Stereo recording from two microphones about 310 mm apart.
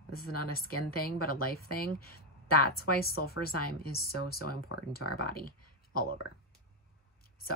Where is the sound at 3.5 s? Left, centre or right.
Left.